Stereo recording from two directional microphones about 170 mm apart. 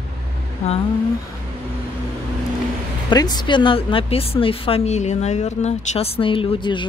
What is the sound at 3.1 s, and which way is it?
Speech, 25° left (ahead or behind).